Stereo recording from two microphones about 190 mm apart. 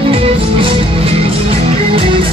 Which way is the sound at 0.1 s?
30° right (ahead or behind).